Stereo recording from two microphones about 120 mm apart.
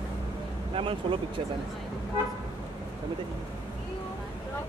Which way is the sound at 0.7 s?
50° right (ahead or behind).